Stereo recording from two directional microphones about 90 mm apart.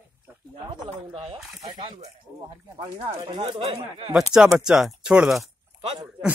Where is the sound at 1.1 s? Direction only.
90° right.